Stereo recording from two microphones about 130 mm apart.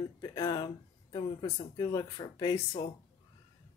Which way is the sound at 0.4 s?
30° left (ahead or behind).